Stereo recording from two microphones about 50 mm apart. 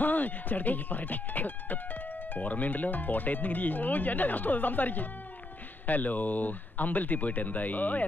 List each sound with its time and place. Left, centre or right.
0.0 s speech: left